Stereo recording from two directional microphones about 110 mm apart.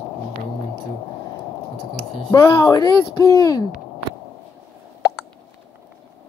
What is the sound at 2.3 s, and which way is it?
Speech, 30° left (ahead or behind).